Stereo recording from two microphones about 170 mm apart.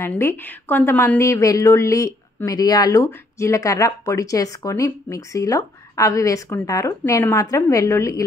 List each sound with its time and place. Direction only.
0.0 s a woman's voice: 15° left (ahead or behind)